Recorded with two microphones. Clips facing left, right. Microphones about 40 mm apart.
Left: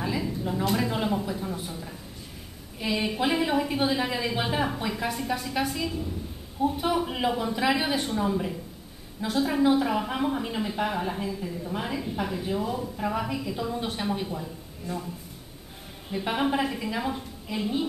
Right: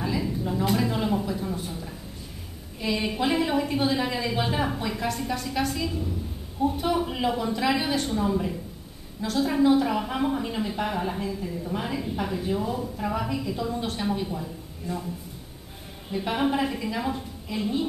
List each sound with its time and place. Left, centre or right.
0.2 s a sound: centre
2.8 s a woman's voice: centre
16.1 s a woman's voice: centre